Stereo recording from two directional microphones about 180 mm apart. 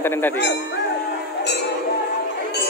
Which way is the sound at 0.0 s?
15° left (ahead or behind).